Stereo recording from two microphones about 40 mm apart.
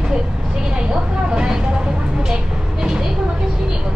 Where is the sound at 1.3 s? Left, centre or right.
Centre.